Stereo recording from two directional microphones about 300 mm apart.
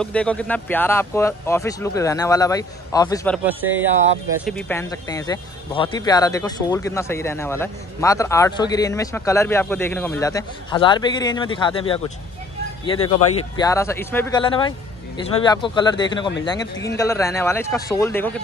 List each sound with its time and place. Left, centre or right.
0.0 s speech: centre
4.5 s speech: centre